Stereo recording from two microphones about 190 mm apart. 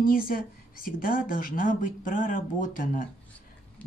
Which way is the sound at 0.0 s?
50° left (ahead or behind).